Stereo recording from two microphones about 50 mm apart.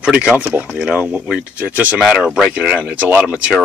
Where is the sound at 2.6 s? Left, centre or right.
Right.